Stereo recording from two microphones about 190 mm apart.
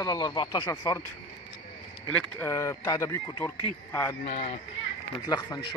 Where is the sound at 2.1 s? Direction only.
15° left (ahead or behind).